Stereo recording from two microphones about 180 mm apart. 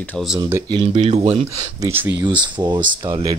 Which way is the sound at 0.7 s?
25° right (ahead or behind).